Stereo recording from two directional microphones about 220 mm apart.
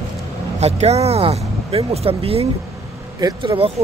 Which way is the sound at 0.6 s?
30° right (ahead or behind).